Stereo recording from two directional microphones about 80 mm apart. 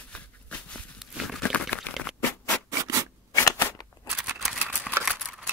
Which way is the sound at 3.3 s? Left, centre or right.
Left.